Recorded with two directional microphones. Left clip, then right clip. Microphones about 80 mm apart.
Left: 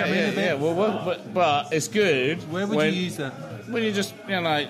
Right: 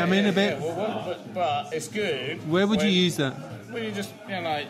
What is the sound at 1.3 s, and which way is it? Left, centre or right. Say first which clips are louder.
A man's voice: left 5 dB; left.